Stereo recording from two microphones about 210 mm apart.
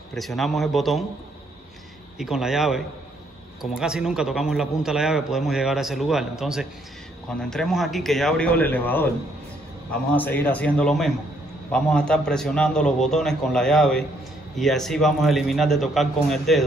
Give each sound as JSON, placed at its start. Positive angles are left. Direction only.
{"t": 0.1, "sound": "a man's voice", "side_deg": 0}
{"t": 2.1, "sound": "a man's voice", "side_deg": 0}
{"t": 10.1, "sound": "a man's voice", "side_deg": 10}